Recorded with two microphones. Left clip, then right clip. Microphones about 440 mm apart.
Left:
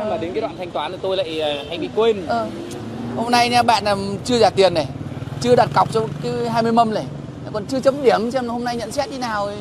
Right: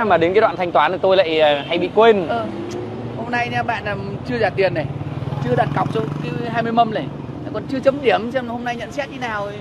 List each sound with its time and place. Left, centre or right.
0.1 s speech: right; by 2.1 s centre
3.3 s speech: left
5.6 s speech: left